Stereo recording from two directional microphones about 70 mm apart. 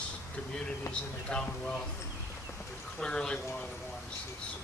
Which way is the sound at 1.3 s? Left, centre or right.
Centre.